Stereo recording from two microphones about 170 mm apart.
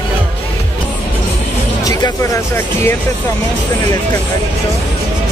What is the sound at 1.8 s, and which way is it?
Music, 20° left (ahead or behind).